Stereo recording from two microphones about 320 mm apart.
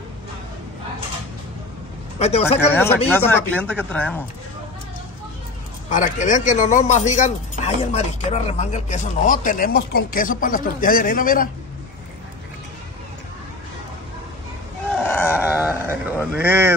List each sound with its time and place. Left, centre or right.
2.1 s speech: centre
2.7 s speech: centre
5.9 s a man's voice: left
14.9 s groan: centre
15.3 s a sound: centre